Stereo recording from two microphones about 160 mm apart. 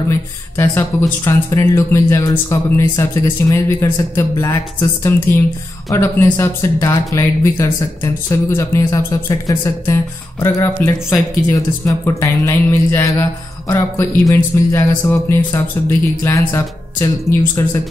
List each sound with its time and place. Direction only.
0.6 s speech: 15° left (ahead or behind)